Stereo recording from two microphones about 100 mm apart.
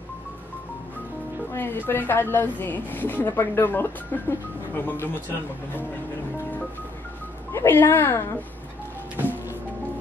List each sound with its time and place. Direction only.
1.5 s speech: 20° left (ahead or behind)
7.5 s speech: 20° left (ahead or behind)